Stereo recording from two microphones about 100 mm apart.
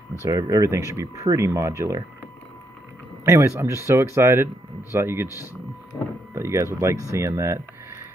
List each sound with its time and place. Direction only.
0.2 s speech: 35° right (ahead or behind)
3.3 s speech: 30° right (ahead or behind)